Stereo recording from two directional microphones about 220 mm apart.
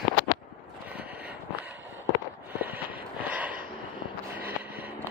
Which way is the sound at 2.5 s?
10° right (ahead or behind).